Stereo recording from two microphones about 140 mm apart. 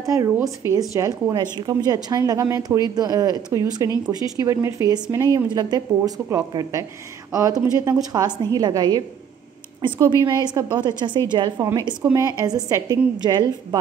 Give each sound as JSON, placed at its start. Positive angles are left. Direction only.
{"t": 0.0, "sound": "a woman's voice", "side_deg": -25}